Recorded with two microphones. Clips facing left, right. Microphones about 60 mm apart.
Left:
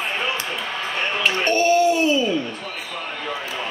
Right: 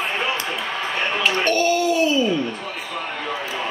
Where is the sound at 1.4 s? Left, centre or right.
Left.